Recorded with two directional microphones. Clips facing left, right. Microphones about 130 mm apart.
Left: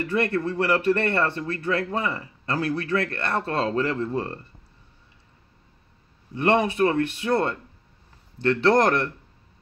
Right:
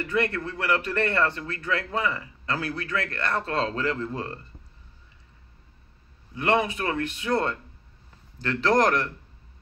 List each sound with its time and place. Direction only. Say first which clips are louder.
0.1 s a man's voice: left 2 dB; 30° left (ahead or behind)
6.3 s a man's voice: left 3 dB; 30° left (ahead or behind)